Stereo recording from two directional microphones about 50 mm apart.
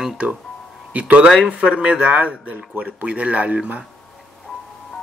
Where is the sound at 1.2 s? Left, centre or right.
Centre.